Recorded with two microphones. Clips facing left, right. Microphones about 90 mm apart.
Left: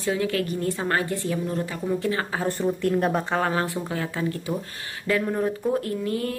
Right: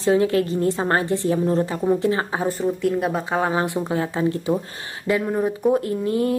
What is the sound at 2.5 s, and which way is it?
Speech, centre (ahead or behind).